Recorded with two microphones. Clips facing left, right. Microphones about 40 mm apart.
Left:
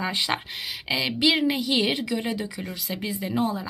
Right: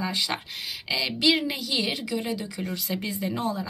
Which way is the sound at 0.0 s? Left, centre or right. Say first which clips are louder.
Left 2 dB; left.